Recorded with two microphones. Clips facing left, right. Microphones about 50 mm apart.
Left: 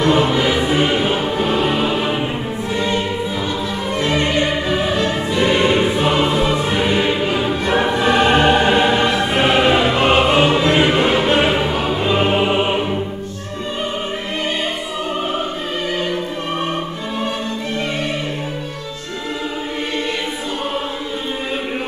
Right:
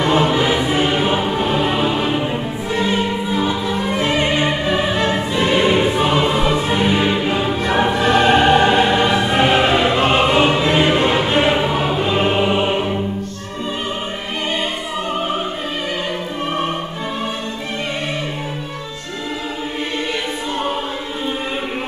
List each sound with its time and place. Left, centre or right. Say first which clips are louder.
0.0 s music: even; centre
2.7 s music: right 2 dB; centre
5.6 s choir: even; centre
6.0 s music: even; centre
12.2 s music: even; centre